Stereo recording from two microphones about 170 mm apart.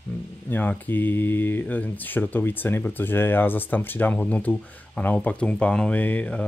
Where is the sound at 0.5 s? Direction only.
10° left (ahead or behind).